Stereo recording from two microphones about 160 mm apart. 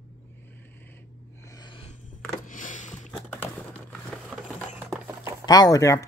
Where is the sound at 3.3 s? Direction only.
10° left (ahead or behind).